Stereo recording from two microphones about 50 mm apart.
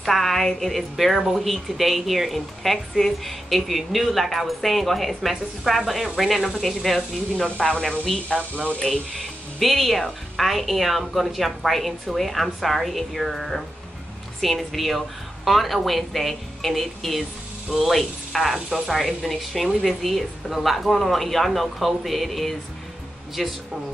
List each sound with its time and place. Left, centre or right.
0.0 s speech: centre
7.4 s speech: left
9.6 s speech: centre